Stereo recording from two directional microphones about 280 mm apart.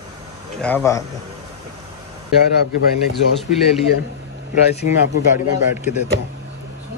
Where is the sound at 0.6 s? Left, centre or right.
Centre.